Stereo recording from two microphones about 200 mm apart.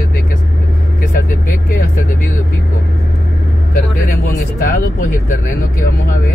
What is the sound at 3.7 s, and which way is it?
Vehicle, 45° left (ahead or behind).